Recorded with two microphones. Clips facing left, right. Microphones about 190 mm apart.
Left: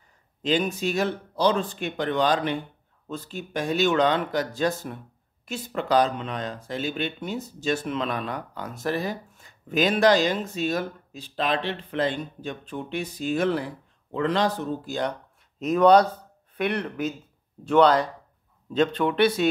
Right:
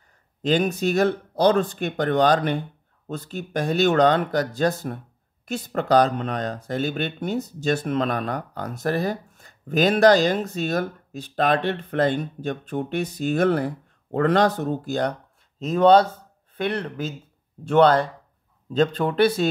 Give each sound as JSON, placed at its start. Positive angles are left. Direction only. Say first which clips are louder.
{"t": 0.4, "sound": "speech", "louder": "right 3 dB", "side_deg": -45}
{"t": 15.6, "sound": "speech", "louder": "right 1 dB", "side_deg": -30}
{"t": 17.6, "sound": "speech", "louder": "right 2 dB", "side_deg": -55}
{"t": 18.7, "sound": "speech", "louder": "right 1 dB", "side_deg": -35}